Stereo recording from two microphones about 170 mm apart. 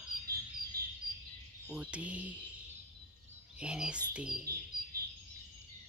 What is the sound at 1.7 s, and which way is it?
Speech, 5° right (ahead or behind).